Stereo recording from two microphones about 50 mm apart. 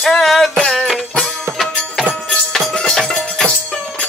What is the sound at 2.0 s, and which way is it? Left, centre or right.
Music, centre.